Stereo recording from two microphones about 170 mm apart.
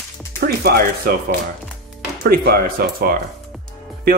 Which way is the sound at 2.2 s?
65° right (ahead or behind).